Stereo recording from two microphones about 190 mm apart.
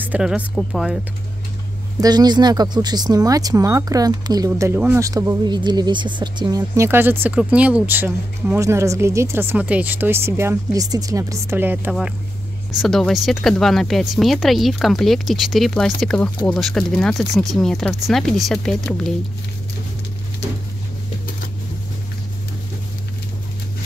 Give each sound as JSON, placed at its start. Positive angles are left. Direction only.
{"t": 0.0, "sound": "speech", "side_deg": -5}
{"t": 2.0, "sound": "speech", "side_deg": -20}
{"t": 12.8, "sound": "speech", "side_deg": 0}